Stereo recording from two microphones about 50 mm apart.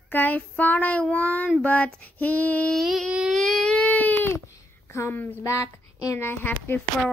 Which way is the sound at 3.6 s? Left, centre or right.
Centre.